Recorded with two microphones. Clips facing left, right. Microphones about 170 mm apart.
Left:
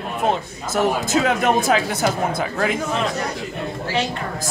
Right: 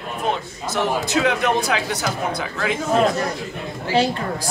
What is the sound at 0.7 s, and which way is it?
A man's voice, 50° left (ahead or behind).